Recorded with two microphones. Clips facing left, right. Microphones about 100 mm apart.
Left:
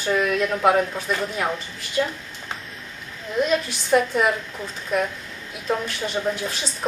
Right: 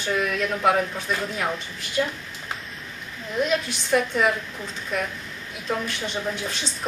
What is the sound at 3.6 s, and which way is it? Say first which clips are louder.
Speech: left 3 dB; 5° left (ahead or behind).